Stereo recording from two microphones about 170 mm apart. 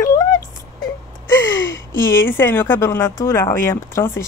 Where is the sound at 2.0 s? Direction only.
15° left (ahead or behind).